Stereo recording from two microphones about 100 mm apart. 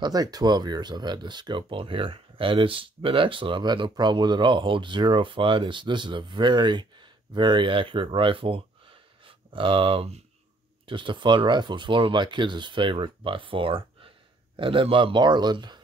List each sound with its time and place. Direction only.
0.0 s speech: 40° right (ahead or behind); by 10.2 s 75° right (ahead or behind)
10.9 s speech: 55° right (ahead or behind)